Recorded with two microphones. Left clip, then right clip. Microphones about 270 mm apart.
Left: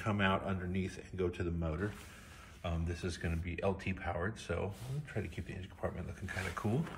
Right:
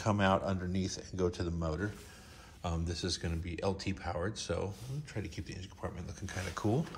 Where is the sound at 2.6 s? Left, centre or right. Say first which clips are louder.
Right 3 dB; centre.